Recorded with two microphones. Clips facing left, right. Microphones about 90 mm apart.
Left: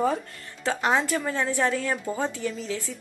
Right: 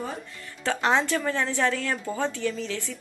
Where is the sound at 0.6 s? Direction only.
15° left (ahead or behind).